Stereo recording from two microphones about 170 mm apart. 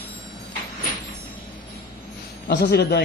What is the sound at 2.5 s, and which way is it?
Speech, 80° left.